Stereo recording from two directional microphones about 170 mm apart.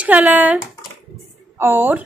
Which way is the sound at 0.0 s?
10° right (ahead or behind).